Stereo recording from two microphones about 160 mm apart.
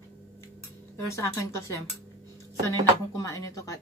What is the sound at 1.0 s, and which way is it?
Speech, 20° left (ahead or behind).